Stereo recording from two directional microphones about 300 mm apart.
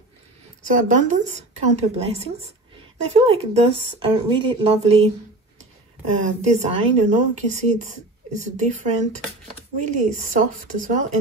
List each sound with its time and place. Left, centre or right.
0.7 s speech: right
6.2 s speech: right